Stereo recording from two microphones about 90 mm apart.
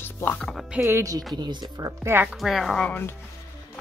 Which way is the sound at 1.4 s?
55° right (ahead or behind).